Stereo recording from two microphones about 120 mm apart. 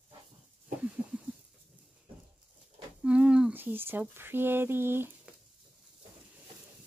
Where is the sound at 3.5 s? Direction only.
15° right (ahead or behind).